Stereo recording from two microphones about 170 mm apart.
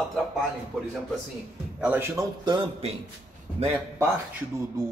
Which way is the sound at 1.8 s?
10° right (ahead or behind).